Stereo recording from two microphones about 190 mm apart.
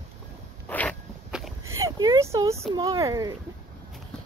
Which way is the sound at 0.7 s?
10° left (ahead or behind).